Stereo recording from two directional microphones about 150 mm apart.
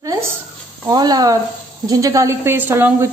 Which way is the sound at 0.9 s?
25° right (ahead or behind).